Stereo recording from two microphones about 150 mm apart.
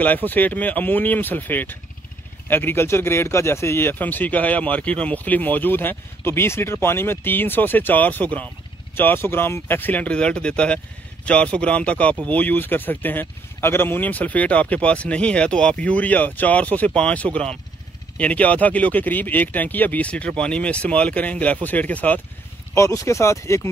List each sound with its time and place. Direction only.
0.0 s speech: 10° left (ahead or behind)